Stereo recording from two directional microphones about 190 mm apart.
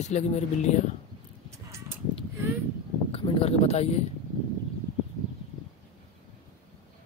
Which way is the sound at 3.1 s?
30° left (ahead or behind).